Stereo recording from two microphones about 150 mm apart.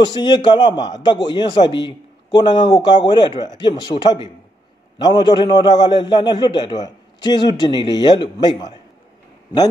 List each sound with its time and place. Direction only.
0.0 s a man's voice: 30° left (ahead or behind)